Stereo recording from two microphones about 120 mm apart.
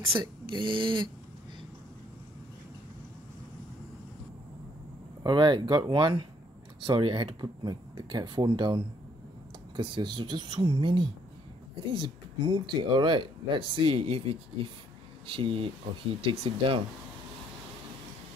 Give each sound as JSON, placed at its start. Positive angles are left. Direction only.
{"t": 0.2, "sound": "speech", "side_deg": -45}
{"t": 5.2, "sound": "speech", "side_deg": -40}